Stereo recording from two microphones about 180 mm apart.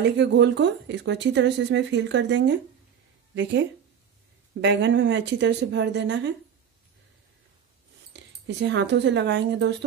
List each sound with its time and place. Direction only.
0.2 s a woman's voice: 80° right
4.6 s a woman's voice: 80° right
8.1 s speech: 75° right (ahead or behind)